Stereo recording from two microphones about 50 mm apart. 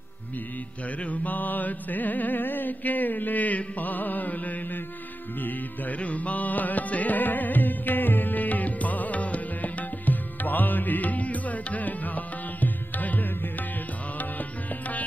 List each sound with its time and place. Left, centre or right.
1.0 s music: left